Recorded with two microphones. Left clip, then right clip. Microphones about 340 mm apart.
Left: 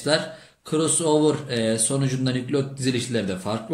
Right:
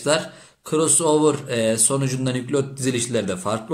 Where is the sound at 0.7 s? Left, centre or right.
Centre.